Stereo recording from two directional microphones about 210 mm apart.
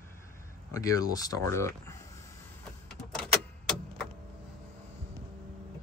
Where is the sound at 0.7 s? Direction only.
15° left (ahead or behind).